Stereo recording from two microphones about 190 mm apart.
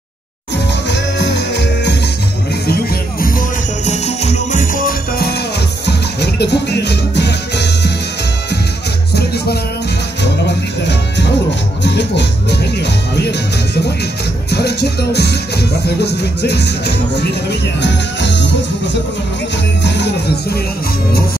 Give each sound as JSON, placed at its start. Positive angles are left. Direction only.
{"t": 0.8, "sound": "music", "side_deg": 65}
{"t": 5.9, "sound": "music", "side_deg": 60}
{"t": 9.1, "sound": "music", "side_deg": 60}
{"t": 10.8, "sound": "music", "side_deg": 65}
{"t": 14.5, "sound": "music", "side_deg": 60}
{"t": 19.8, "sound": "music", "side_deg": 65}